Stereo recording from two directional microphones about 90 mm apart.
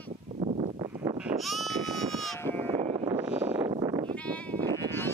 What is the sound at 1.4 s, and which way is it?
Sheep, centre (ahead or behind).